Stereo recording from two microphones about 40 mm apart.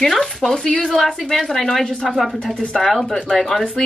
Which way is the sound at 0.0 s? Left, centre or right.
Centre.